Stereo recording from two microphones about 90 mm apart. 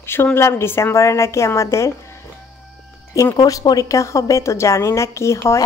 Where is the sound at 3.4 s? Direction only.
40° left (ahead or behind).